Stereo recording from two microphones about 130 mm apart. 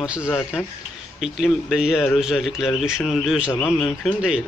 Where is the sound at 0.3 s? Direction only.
15° left (ahead or behind).